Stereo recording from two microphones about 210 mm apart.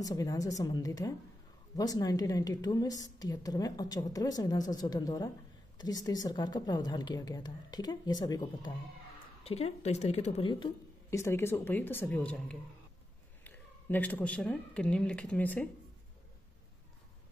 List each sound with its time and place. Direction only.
0.0 s a woman's voice: 15° left (ahead or behind)